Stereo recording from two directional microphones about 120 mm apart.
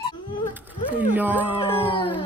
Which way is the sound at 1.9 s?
40° left (ahead or behind).